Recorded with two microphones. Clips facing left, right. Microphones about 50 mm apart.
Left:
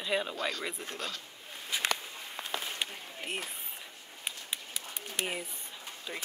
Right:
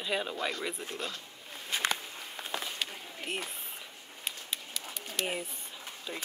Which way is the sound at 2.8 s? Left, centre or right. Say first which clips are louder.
Even; left.